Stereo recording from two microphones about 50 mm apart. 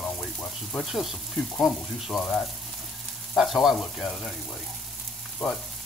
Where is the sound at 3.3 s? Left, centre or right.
Centre.